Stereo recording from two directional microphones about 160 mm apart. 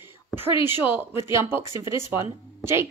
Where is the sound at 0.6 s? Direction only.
15° right (ahead or behind).